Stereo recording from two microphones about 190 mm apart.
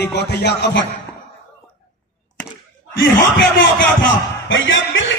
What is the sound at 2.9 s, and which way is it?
Speech, 70° left (ahead or behind).